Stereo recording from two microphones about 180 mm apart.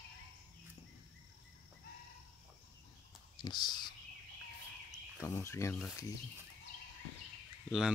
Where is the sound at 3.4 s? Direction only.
25° left (ahead or behind).